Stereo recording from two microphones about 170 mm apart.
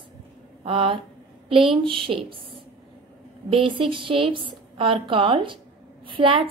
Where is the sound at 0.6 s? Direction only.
30° right (ahead or behind).